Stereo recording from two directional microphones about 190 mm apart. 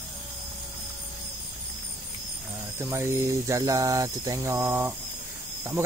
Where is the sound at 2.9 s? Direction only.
15° right (ahead or behind).